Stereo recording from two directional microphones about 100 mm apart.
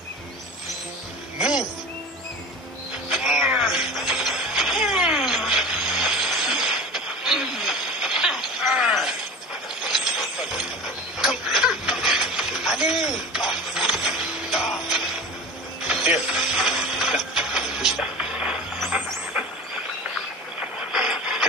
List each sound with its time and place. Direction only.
3.1 s music: 5° right (ahead or behind)
11.1 s a sound: 5° right (ahead or behind)
19.4 s vehicle: 10° right (ahead or behind)
20.9 s radio: 5° right (ahead or behind)